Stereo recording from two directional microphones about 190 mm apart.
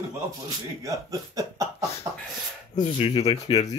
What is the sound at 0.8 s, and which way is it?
Speech, 15° right (ahead or behind).